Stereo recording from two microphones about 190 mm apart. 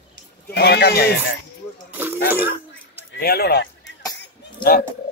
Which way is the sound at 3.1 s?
55° left (ahead or behind).